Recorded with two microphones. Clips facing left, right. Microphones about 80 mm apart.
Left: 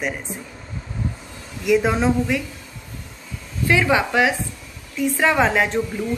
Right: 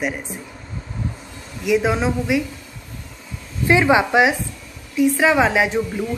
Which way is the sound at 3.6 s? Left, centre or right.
Right.